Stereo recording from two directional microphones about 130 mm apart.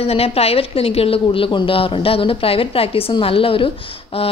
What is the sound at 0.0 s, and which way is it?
Speech, 50° left (ahead or behind).